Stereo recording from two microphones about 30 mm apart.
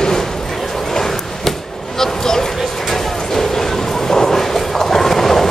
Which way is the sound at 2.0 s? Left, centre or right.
Centre.